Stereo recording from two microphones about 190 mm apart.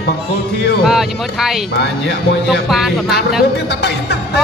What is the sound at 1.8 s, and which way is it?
Speech, 60° left (ahead or behind).